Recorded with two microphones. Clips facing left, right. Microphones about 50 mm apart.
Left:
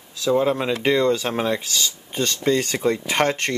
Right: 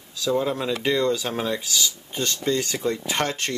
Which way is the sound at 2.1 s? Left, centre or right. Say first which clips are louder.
Left 4 dB; left.